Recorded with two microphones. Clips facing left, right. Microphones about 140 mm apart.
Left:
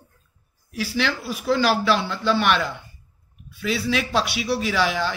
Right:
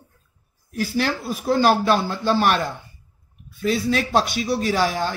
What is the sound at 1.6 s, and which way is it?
Speech, 50° right (ahead or behind).